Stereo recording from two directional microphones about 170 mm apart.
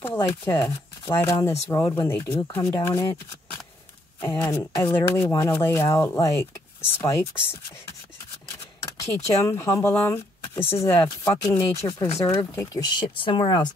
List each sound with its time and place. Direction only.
0.0 s speech: 15° left (ahead or behind)
4.2 s speech: 15° left (ahead or behind)
8.8 s a sound: 20° left (ahead or behind)
9.4 s speech: 15° left (ahead or behind)